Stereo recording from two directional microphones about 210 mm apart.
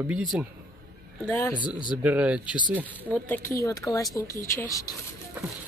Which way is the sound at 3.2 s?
10° left (ahead or behind).